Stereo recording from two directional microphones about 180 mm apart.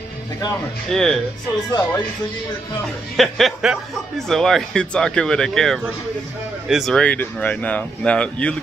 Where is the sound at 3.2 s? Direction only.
Centre (ahead or behind).